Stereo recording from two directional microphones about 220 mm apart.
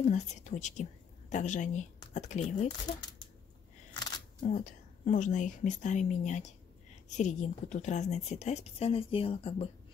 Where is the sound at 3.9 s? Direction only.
20° left (ahead or behind).